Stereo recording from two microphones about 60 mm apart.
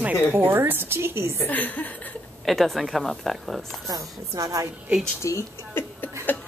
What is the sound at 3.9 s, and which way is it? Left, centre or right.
Speech, right.